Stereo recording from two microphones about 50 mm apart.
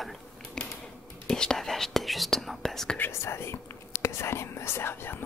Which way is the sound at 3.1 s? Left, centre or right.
Left.